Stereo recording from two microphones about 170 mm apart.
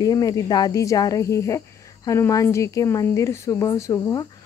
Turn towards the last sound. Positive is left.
turn(degrees=20)  # may be behind; listen again after turning